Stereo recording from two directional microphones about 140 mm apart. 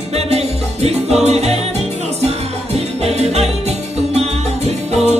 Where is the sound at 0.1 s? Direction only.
50° right (ahead or behind).